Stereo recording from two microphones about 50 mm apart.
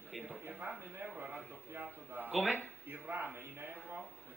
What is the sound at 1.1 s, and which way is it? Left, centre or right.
Speech, right.